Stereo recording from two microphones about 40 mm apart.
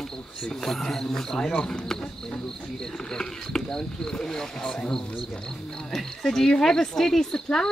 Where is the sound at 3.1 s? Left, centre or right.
Centre.